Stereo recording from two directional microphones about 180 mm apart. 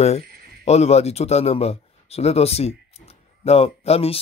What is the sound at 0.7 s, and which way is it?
A man's voice, 35° left (ahead or behind).